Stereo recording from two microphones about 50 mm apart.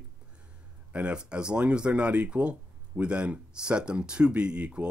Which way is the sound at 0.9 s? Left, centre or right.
Right.